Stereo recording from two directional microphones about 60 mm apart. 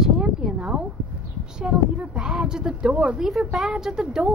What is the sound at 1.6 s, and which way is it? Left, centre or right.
A woman's voice, centre.